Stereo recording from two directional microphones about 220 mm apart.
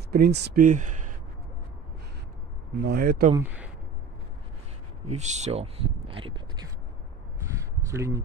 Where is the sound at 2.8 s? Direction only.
45° right (ahead or behind).